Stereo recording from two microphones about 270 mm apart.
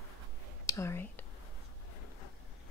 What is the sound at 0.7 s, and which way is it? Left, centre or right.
Speech, centre.